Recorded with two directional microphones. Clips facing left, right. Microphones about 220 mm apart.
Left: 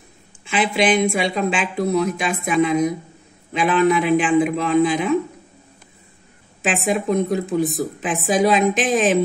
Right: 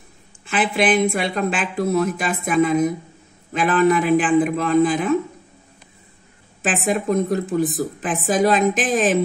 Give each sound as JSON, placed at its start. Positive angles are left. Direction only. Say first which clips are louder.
{"t": 0.5, "sound": "speech", "louder": "even", "side_deg": 0}
{"t": 6.6, "sound": "speech", "louder": "left 1 dB", "side_deg": 0}